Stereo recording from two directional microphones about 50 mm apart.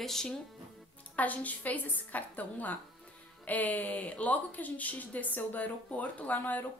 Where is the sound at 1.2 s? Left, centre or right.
Left.